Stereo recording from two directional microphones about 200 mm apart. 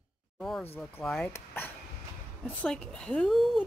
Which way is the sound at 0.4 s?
Centre (ahead or behind).